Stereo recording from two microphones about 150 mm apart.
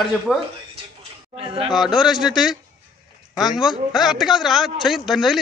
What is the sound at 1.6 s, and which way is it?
A man's voice, centre (ahead or behind).